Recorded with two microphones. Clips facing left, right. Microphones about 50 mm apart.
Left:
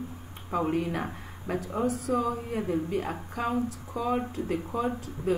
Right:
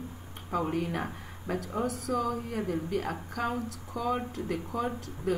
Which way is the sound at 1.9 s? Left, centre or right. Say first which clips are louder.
Left 4 dB; right.